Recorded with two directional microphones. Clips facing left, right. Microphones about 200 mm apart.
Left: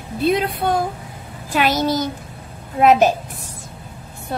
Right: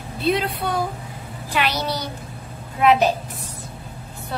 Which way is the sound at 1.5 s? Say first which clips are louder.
Left 5 dB; 45° left (ahead or behind).